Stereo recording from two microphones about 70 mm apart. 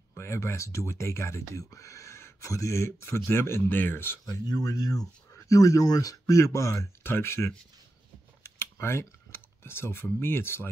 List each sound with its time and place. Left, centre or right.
0.1 s speech: left
4.3 s speech: left
8.5 s computer keyboard: left
10.2 s speech: left